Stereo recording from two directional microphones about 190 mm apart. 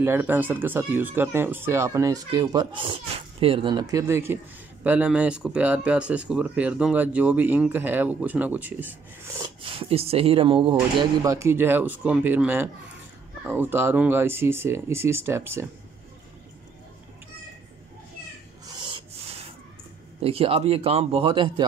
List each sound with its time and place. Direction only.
0.0 s speech: 10° right (ahead or behind)
9.8 s speech: 30° right (ahead or behind); by 15.6 s 15° right (ahead or behind)
18.7 s rub: 25° right (ahead or behind)
20.2 s a man's voice: 30° right (ahead or behind)